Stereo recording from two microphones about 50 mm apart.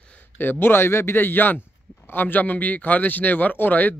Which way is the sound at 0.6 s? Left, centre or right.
Left.